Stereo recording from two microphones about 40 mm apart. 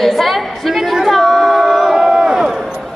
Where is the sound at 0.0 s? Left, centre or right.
Centre.